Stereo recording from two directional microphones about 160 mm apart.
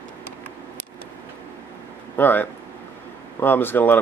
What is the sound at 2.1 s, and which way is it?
Speech, 10° left (ahead or behind).